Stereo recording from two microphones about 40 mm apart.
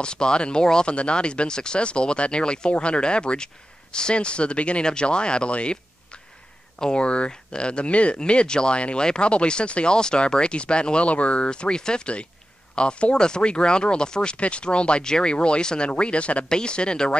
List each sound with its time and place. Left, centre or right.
0.0 s speech: left
6.8 s speech: left